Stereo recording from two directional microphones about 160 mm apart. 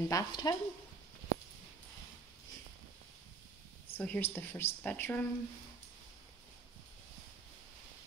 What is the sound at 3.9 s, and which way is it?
A woman's voice, 10° left (ahead or behind).